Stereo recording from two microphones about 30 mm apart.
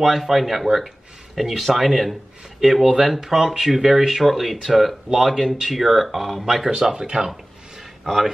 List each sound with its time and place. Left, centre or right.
0.0 s speech: centre
6.7 s speech: right